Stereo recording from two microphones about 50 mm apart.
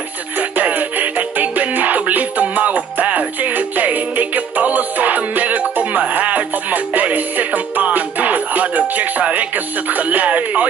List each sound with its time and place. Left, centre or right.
0.4 s music: right